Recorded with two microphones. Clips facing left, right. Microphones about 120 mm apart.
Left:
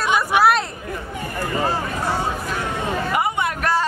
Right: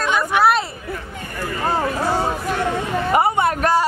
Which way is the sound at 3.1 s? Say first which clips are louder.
Right 8 dB; 35° right (ahead or behind).